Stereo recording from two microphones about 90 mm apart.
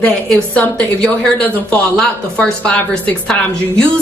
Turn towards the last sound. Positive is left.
turn(degrees=10)  # may be behind; listen again after turning